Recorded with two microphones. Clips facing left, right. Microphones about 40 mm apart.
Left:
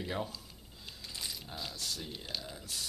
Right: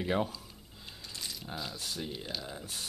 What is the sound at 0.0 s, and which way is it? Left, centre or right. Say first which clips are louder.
Speech: right 6 dB; right.